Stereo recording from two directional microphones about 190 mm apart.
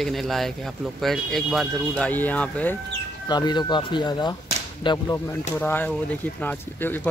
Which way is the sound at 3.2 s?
20° left (ahead or behind).